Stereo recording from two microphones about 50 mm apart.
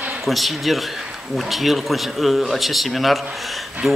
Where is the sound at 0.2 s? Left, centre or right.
Centre.